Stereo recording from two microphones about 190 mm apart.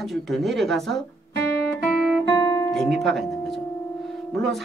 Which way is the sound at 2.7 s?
Centre (ahead or behind).